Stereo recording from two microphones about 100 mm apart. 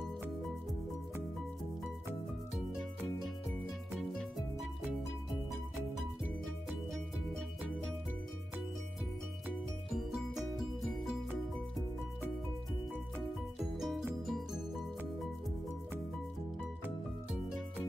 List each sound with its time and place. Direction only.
3.4 s music: centre (ahead or behind)
6.4 s music: 5° left (ahead or behind)
13.7 s music: centre (ahead or behind)